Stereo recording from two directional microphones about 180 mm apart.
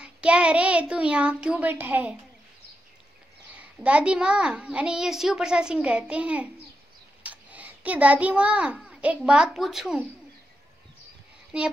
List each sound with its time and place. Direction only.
0.0 s a child's voice: 5° right (ahead or behind)
3.5 s a child's voice: 5° right (ahead or behind)